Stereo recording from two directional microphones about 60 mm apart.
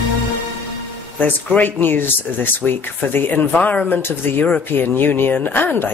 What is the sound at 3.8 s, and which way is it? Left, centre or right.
Speech, left.